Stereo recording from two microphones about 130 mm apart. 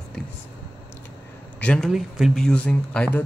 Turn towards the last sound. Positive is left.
turn(degrees=10)  # may be behind; listen again after turning